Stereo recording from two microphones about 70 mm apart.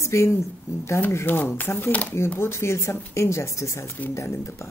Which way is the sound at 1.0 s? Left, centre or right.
Left.